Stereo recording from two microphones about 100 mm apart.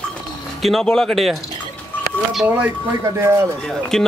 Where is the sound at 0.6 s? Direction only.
Centre (ahead or behind).